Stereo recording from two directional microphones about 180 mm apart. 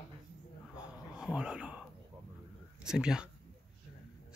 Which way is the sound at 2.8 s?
5° right (ahead or behind).